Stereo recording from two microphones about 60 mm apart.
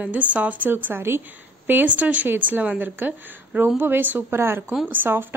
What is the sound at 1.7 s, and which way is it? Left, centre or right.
Speech, right.